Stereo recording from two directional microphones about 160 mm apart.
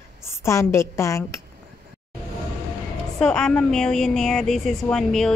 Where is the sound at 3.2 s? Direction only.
5° left (ahead or behind).